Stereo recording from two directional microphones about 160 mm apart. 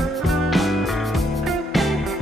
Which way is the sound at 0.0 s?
Centre (ahead or behind).